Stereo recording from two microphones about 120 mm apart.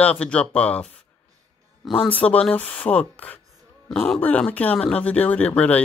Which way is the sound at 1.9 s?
10° left (ahead or behind).